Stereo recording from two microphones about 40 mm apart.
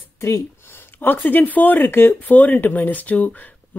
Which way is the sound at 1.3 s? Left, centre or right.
Left.